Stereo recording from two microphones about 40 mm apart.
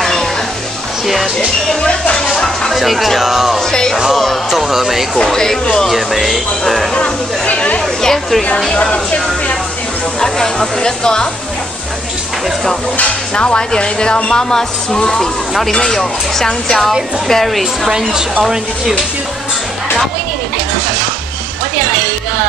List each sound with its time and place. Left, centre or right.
0.0 s music: centre
1.0 s music: centre
1.8 s music: left
2.7 s speech: centre
4.1 s music: centre
4.5 s speech: centre
5.1 s speech: centre
5.9 s speech: centre
7.0 s speech: left
8.9 s speech: left
10.2 s speech: centre
13.3 s speech: left
14.5 s speech: centre